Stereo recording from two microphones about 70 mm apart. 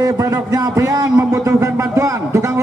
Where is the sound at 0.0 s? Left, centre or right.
Right.